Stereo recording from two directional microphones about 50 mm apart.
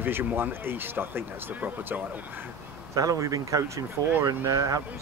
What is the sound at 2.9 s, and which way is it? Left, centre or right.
Speech, right.